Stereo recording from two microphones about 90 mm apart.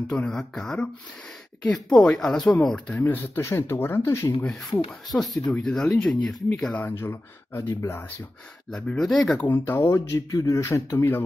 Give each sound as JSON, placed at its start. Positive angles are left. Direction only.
{"t": 0.1, "sound": "speech", "side_deg": 10}
{"t": 3.0, "sound": "speech", "side_deg": 25}
{"t": 5.1, "sound": "speech", "side_deg": 0}
{"t": 8.6, "sound": "speech", "side_deg": 10}
{"t": 9.5, "sound": "speech", "side_deg": 20}
{"t": 10.1, "sound": "a man's voice", "side_deg": 35}
{"t": 10.7, "sound": "speech", "side_deg": 25}